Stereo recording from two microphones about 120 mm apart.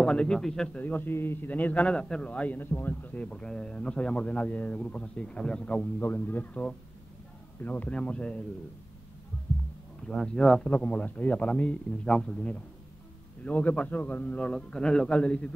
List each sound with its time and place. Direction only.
0.0 s a man's voice: 10° left (ahead or behind)
5.9 s a man's voice: 20° left (ahead or behind)
10.0 s a man's voice: 5° left (ahead or behind)